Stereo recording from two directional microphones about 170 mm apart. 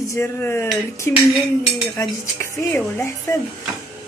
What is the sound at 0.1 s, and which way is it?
Speech, 15° left (ahead or behind).